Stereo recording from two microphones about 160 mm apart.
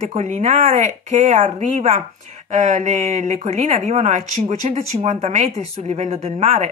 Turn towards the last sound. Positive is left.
turn(degrees=-40)  # may be behind; listen again after turning